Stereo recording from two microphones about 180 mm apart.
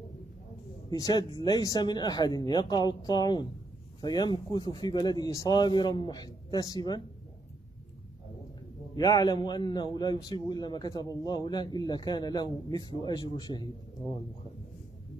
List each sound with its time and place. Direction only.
0.8 s a man's voice: 20° left (ahead or behind)
8.9 s a man's voice: 20° left (ahead or behind)